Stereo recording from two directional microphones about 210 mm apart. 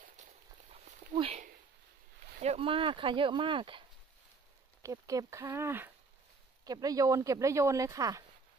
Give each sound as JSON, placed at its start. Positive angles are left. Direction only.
{"t": 0.2, "sound": "a sound", "side_deg": -35}
{"t": 2.3, "sound": "speech", "side_deg": -30}
{"t": 4.8, "sound": "speech", "side_deg": -15}